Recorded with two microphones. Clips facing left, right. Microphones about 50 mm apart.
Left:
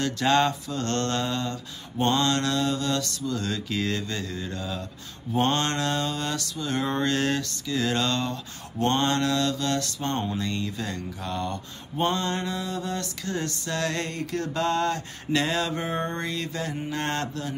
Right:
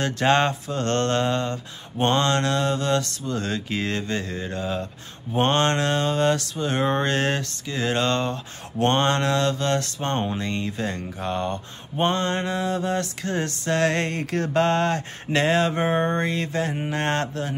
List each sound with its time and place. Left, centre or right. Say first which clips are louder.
0.0 s mantra: right 2 dB; right